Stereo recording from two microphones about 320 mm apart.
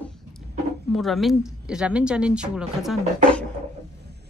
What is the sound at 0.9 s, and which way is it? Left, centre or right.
Speech, centre.